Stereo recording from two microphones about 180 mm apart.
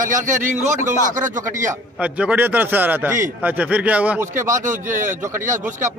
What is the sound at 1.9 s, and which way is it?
A man's voice, 5° right (ahead or behind).